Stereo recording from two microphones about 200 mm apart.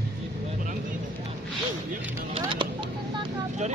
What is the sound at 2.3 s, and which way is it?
Vehicle, 25° right (ahead or behind).